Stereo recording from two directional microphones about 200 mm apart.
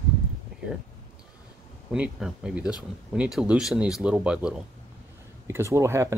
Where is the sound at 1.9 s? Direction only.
5° right (ahead or behind).